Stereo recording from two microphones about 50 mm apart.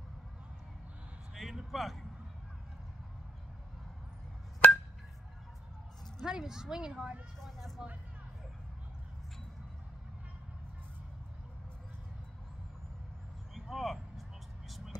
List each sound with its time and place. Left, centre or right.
1.3 s speech: centre
4.6 s a sound: left
6.2 s speech: centre
7.4 s vehicle: centre
13.6 s vehicle: centre